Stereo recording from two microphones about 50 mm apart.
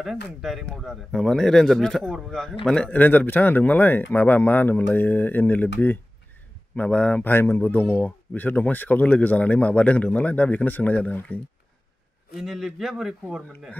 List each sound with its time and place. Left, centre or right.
0.0 s a man's voice: centre
2.9 s speech: left
6.7 s speech: left
7.2 s speech: left
12.4 s a man's voice: centre